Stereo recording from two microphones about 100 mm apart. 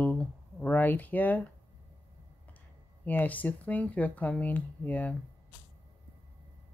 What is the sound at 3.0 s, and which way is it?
Speech, 15° left (ahead or behind).